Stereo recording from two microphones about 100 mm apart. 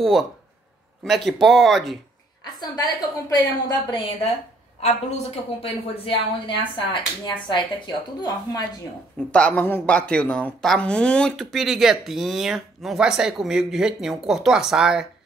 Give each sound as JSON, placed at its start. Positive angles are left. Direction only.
{"t": 0.0, "sound": "speech", "side_deg": 0}
{"t": 2.7, "sound": "a woman's voice", "side_deg": 35}
{"t": 4.8, "sound": "a woman's voice", "side_deg": 85}
{"t": 9.3, "sound": "speech", "side_deg": 15}